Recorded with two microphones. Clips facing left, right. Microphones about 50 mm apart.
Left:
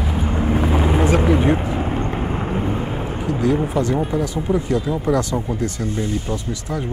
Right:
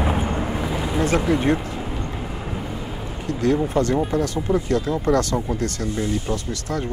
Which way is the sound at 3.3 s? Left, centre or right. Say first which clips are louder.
Left 1 dB; centre.